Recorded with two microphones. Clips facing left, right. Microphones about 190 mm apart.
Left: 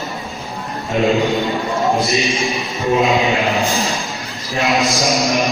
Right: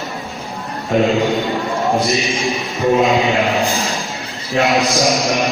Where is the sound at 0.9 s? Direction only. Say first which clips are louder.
Right 2 dB; 50° right (ahead or behind).